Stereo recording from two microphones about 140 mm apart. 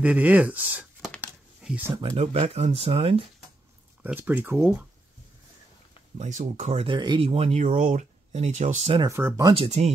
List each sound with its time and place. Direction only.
0.0 s speech: 10° right (ahead or behind)
1.6 s a sound: 5° right (ahead or behind)
2.0 s speech: 40° right (ahead or behind)
4.0 s speech: 10° right (ahead or behind)
6.1 s speech: 65° right (ahead or behind)
6.8 s speech: 35° right (ahead or behind)
7.2 s speech: 50° right (ahead or behind)
9.1 s speech: 20° right (ahead or behind)
9.5 s speech: 45° right (ahead or behind)